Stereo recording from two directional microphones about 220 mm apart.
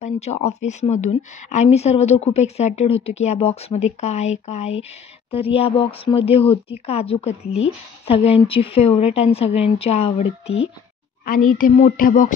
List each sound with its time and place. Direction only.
0.0 s a woman's voice: 30° left (ahead or behind)